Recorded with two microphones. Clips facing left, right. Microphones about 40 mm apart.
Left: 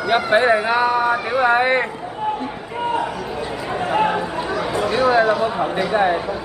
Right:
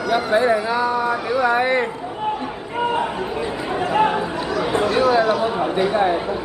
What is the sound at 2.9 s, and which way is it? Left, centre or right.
Chatter, right.